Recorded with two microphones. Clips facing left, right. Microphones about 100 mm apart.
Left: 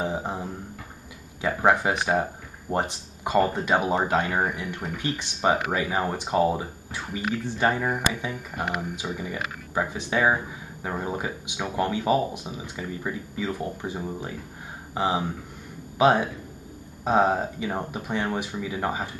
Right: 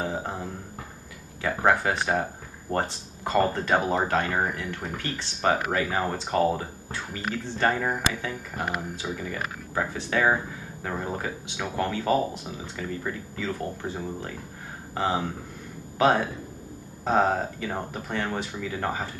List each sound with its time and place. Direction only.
0.0 s speech: 15° left (ahead or behind)